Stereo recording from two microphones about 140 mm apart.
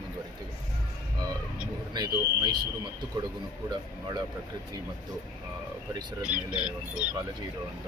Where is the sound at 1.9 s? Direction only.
30° right (ahead or behind).